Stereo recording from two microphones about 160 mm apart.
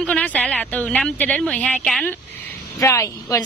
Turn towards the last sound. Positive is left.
turn(degrees=20)  # may be behind; listen again after turning